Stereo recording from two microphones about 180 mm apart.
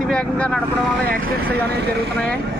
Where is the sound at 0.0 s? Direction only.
5° left (ahead or behind).